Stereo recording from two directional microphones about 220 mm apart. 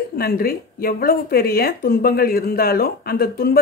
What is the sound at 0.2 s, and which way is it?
Speech, 45° left (ahead or behind).